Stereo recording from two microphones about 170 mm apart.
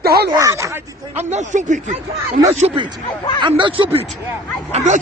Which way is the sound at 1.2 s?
45° right (ahead or behind).